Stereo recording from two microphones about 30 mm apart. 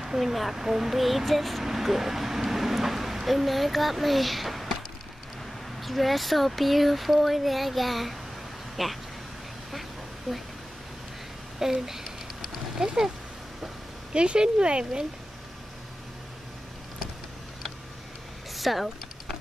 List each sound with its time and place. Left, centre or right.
0.0 s a sound: centre
0.3 s speech: centre
0.6 s speech: centre
1.6 s speech: centre
5.8 s speech: centre
10.3 s speech: centre
11.6 s speech: centre
12.8 s speech: right
14.1 s speech: right
18.5 s a sound: centre